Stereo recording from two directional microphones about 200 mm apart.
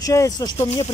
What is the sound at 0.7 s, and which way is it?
Speech, 30° left (ahead or behind).